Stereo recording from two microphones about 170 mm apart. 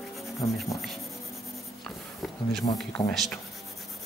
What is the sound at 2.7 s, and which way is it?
Speech, 35° left (ahead or behind).